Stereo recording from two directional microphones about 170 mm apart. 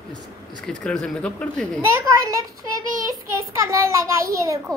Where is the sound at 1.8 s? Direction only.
15° right (ahead or behind).